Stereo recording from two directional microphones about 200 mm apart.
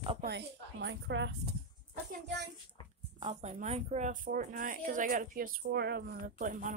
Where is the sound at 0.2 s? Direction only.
60° right (ahead or behind).